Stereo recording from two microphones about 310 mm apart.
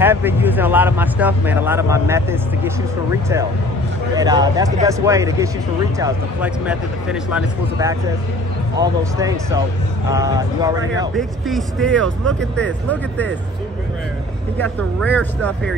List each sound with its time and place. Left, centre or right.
0.0 s speech: centre
4.1 s speech: centre
11.1 s speech: centre
14.6 s speech: centre